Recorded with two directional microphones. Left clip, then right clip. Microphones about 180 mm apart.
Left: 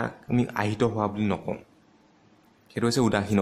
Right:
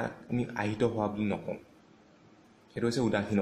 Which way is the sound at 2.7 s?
45° left (ahead or behind).